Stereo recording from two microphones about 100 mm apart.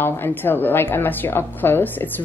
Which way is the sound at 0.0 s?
20° left (ahead or behind).